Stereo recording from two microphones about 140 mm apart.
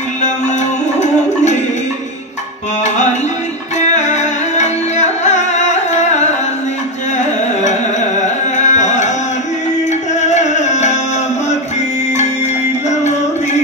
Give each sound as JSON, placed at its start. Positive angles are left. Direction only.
{"t": 1.0, "sound": "a sound", "side_deg": 60}
{"t": 2.8, "sound": "tabla", "side_deg": 55}
{"t": 3.8, "sound": "music", "side_deg": 55}
{"t": 8.5, "sound": "tabla", "side_deg": 60}
{"t": 10.2, "sound": "music", "side_deg": 55}